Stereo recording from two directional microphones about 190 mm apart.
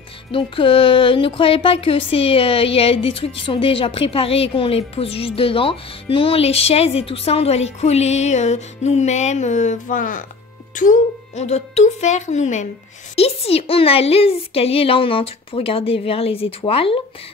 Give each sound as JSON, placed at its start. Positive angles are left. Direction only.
{"t": 0.3, "sound": "a woman's voice", "side_deg": 25}
{"t": 7.8, "sound": "music", "side_deg": 35}
{"t": 13.1, "sound": "a woman's voice", "side_deg": 30}